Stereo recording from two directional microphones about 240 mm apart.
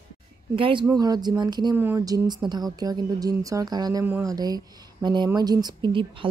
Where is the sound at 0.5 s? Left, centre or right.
Right.